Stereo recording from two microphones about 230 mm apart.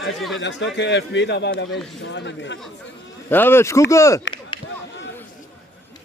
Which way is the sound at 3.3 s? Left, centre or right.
Centre.